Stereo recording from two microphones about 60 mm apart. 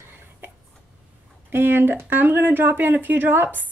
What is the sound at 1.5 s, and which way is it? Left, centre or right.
Speech, right.